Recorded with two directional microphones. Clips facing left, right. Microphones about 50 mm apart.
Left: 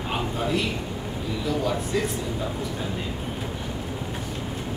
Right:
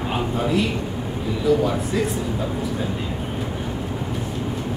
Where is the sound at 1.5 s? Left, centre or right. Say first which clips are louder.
Right 9 dB; centre.